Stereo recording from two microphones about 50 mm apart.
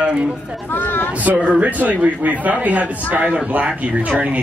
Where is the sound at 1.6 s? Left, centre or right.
Right.